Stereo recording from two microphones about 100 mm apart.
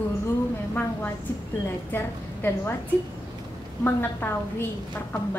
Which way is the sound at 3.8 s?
20° left (ahead or behind).